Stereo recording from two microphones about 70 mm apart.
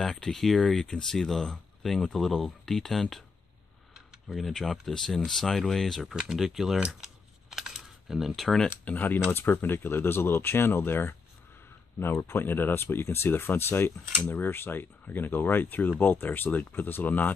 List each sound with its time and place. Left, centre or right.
0.0 s speech: centre
4.3 s speech: centre
6.1 s speech: centre
7.4 s camera: centre
8.8 s speech: left